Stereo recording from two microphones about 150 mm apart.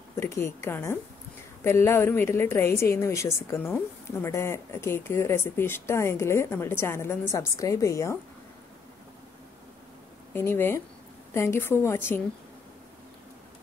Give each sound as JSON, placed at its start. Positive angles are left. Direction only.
{"t": 0.1, "sound": "a woman's voice", "side_deg": 20}
{"t": 10.3, "sound": "a woman's voice", "side_deg": 15}